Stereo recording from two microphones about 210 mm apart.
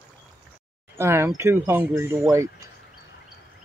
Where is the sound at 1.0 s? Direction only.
10° right (ahead or behind).